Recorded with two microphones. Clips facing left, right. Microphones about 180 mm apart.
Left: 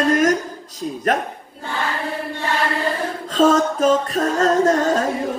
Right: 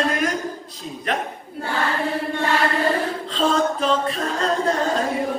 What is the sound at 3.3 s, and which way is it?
A man's voice, 45° left (ahead or behind).